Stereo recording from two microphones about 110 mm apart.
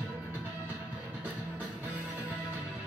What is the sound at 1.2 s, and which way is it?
Music, 15° right (ahead or behind).